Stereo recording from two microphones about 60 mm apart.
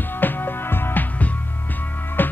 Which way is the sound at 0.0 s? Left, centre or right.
Left.